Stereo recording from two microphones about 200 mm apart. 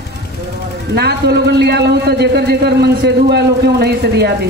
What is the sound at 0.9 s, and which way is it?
A man's voice, 55° right (ahead or behind).